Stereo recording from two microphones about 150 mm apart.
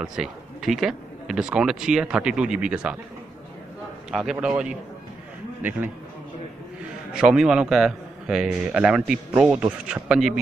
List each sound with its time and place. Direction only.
0.0 s speech: 5° right (ahead or behind)
4.1 s a man's voice: 5° right (ahead or behind)
7.2 s speech: 5° right (ahead or behind)